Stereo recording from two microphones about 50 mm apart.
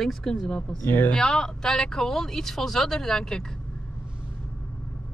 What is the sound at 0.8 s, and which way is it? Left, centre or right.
Speech, left.